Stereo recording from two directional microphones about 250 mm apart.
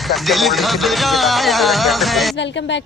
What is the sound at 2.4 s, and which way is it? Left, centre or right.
Speech, left.